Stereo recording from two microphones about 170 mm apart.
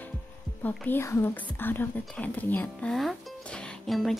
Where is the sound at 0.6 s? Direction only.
10° left (ahead or behind).